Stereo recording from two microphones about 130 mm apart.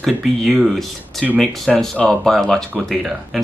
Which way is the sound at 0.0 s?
Centre (ahead or behind).